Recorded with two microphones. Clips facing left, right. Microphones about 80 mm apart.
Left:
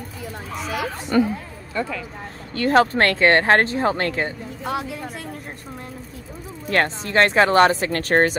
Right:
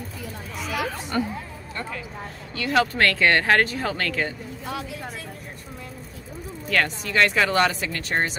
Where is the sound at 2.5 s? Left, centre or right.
Left.